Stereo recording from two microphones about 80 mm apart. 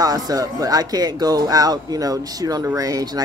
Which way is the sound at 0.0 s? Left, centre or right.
Right.